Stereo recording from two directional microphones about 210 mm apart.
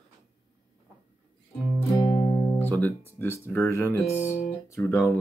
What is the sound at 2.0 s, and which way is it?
Music, 20° left (ahead or behind).